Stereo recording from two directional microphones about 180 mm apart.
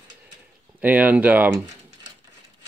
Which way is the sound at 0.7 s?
10° right (ahead or behind).